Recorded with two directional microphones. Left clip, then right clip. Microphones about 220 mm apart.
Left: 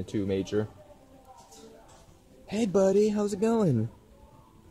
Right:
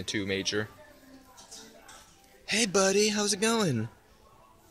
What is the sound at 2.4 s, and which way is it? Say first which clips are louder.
Music: right 3 dB; 10° right (ahead or behind).